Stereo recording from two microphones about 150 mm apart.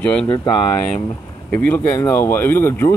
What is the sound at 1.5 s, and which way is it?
Speech, 15° left (ahead or behind).